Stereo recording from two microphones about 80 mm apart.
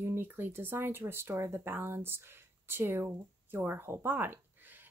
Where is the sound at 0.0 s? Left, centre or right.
Right.